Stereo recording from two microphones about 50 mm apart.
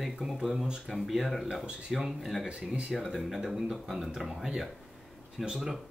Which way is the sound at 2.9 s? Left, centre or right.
Centre.